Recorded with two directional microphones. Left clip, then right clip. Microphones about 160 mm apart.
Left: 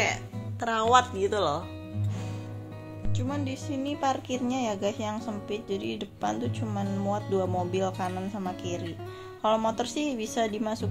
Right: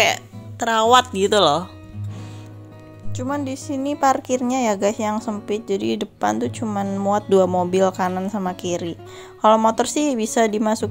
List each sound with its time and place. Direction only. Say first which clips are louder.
0.6 s speech: right 9 dB; 40° right (ahead or behind)
0.9 s speech: right 6 dB; 70° right (ahead or behind)
3.2 s a woman's voice: right 9 dB; 40° right (ahead or behind)
7.1 s a woman's voice: right 13 dB; 60° right (ahead or behind)